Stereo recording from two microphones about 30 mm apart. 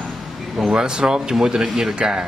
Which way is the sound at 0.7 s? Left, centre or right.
Right.